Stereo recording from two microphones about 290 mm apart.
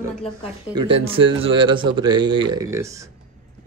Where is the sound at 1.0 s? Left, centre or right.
Centre.